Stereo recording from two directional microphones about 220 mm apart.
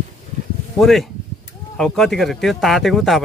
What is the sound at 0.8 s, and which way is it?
Speech, centre (ahead or behind).